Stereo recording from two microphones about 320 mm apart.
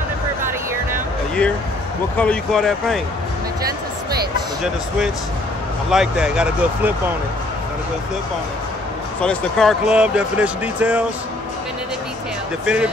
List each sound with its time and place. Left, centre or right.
0.4 s vehicle: centre
2.1 s speech: centre
5.9 s speech: centre
9.2 s speech: centre
12.6 s speech: centre